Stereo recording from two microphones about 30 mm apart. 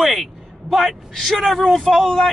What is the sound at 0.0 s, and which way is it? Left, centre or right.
A man's voice, centre.